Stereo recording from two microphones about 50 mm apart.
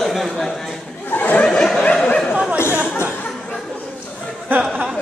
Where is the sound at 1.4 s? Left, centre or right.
Centre.